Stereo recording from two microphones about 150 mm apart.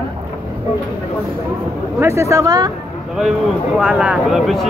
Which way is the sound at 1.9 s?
20° right (ahead or behind).